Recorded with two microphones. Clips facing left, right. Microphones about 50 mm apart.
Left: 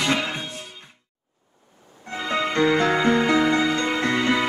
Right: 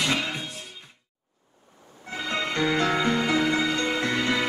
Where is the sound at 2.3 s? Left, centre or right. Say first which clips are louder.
Left 5 dB; centre.